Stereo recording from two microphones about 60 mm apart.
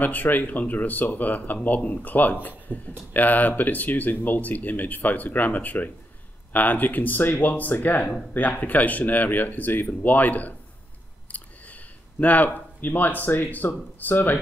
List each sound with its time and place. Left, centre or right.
0.0 s speech: left